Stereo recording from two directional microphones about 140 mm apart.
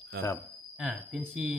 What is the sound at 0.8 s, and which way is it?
Speech, 5° right (ahead or behind).